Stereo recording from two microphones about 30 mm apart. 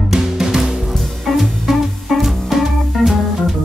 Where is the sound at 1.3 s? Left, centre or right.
Centre.